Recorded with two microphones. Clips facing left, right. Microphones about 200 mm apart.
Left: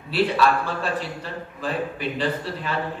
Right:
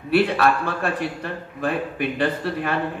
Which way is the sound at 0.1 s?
55° right (ahead or behind).